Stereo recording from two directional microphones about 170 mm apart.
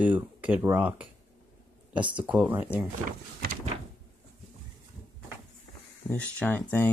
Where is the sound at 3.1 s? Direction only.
60° right (ahead or behind).